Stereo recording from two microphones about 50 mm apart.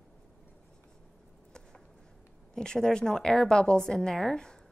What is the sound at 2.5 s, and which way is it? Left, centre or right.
A woman's voice, centre.